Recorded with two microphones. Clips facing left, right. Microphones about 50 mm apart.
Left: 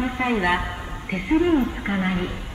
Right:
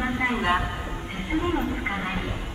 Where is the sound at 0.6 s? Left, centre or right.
Centre.